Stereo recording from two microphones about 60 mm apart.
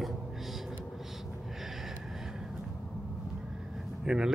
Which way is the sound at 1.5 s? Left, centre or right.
Centre.